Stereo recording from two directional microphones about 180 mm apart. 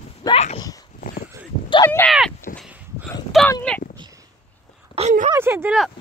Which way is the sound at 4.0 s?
20° right (ahead or behind).